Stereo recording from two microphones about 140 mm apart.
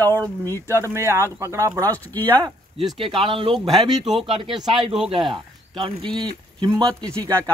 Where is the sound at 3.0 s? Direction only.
40° right (ahead or behind).